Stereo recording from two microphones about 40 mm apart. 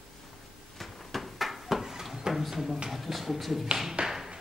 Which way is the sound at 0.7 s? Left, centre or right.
Centre.